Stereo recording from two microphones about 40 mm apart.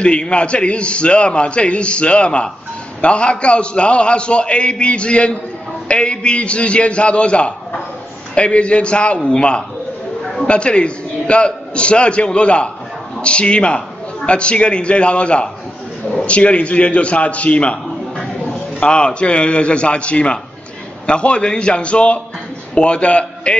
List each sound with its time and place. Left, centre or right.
0.0 s a man's voice: left
18.8 s a man's voice: left